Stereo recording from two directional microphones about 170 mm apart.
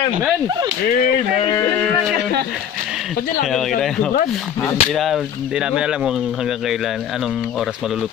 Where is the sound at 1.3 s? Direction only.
25° left (ahead or behind).